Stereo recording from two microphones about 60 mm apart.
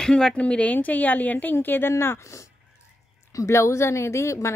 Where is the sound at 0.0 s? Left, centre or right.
Centre; by 2.1 s left.